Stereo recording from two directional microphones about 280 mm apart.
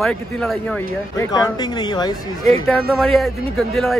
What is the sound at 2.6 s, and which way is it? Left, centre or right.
A man's voice, centre.